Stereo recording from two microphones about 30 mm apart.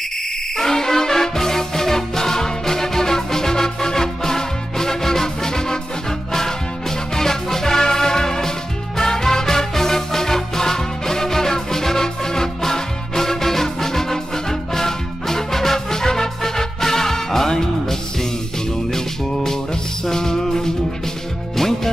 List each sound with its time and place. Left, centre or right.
0.6 s music: centre